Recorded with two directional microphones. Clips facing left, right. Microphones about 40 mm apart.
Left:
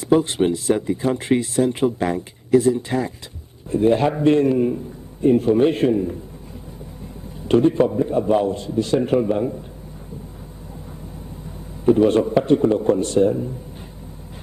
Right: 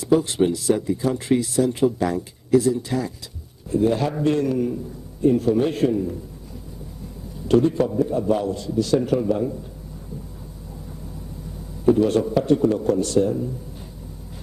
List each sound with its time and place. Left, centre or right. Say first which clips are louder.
0.0 s speech: left 1 dB; left
7.4 s speech: left 2 dB; left
11.8 s speech: left 2 dB; left